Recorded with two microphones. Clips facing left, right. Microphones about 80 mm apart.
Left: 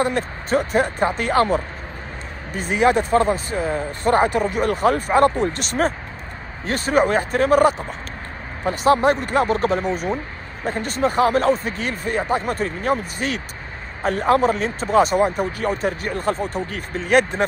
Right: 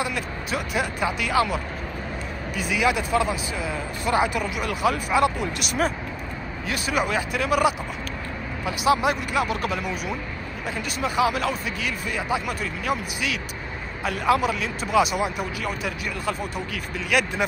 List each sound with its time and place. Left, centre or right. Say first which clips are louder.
0.0 s speech: left 6 dB; left